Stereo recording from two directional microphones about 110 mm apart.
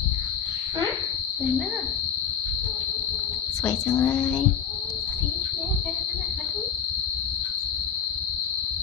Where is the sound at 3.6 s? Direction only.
15° left (ahead or behind).